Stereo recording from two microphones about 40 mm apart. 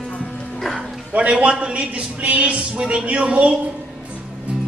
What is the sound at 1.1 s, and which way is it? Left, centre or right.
Speech, right.